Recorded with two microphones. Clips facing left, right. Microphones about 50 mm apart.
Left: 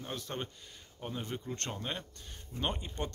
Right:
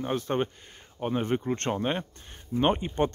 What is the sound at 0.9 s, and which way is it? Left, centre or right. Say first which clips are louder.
Speech: right 12 dB; right.